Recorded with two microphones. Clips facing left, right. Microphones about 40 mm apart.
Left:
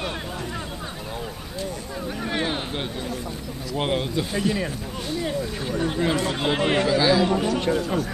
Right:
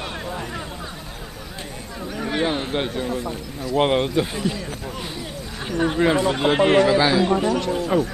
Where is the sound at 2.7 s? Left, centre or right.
Centre.